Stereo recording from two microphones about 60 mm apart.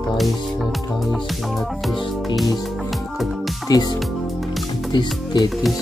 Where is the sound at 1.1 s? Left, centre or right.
Centre.